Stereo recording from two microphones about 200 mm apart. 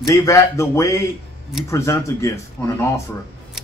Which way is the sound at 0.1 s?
15° left (ahead or behind).